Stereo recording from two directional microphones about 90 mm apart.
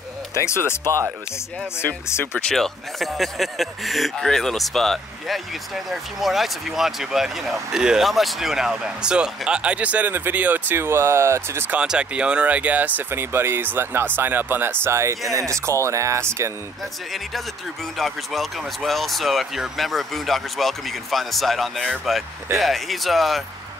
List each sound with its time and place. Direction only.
0.3 s speech: 30° left (ahead or behind)
2.3 s speech: 5° left (ahead or behind); by 11.8 s 25° right (ahead or behind)
11.8 s speech: 10° right (ahead or behind); by 16.5 s 30° right (ahead or behind)
17.9 s speech: centre (ahead or behind)